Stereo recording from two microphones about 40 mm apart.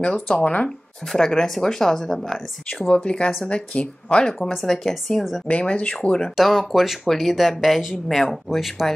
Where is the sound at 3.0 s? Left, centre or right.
Left.